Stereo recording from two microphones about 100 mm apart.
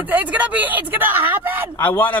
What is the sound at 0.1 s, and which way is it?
Speech, 15° right (ahead or behind).